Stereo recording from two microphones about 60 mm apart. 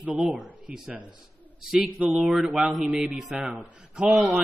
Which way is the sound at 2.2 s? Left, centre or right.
Centre.